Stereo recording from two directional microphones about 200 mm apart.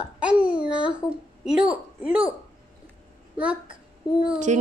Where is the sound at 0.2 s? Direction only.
5° right (ahead or behind).